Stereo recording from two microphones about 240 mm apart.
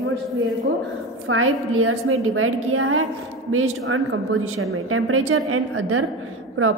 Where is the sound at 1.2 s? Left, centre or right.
Right.